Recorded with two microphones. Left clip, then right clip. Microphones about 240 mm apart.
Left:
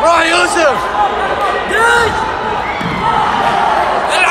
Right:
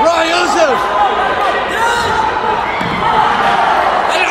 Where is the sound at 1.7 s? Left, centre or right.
Centre.